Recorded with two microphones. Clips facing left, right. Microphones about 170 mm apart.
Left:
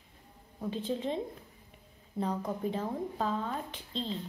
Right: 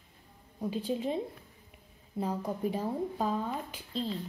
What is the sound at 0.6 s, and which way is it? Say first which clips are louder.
Speech: right 1 dB; 10° right (ahead or behind).